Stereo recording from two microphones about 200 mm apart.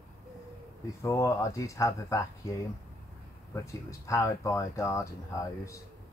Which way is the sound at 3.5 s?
15° left (ahead or behind).